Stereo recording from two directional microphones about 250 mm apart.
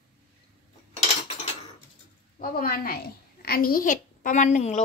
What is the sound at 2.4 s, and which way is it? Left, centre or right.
A woman's voice, left.